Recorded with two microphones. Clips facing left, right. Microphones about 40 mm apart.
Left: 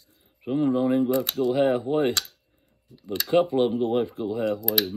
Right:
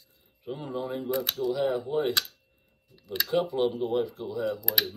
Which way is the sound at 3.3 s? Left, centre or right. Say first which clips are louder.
Left 6 dB; left.